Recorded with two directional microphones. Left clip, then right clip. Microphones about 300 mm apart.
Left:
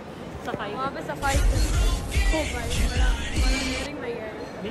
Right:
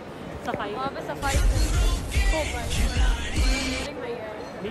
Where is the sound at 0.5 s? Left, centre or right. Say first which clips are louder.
Right 1 dB; right.